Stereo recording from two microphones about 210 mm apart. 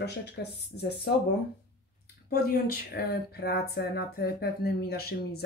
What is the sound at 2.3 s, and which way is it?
A woman's voice, 50° left (ahead or behind).